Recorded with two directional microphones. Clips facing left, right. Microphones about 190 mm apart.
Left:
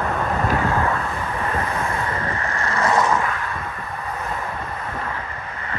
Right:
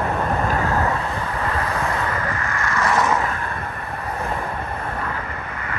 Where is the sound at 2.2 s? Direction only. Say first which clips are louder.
Even; 30° left (ahead or behind).